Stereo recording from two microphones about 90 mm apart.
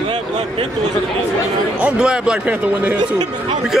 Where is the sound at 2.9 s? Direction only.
50° right (ahead or behind).